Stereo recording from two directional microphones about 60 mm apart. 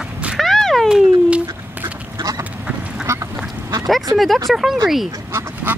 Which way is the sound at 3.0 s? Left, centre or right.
Right.